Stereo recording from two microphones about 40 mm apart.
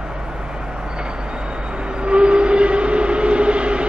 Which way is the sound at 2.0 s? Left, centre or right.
Right.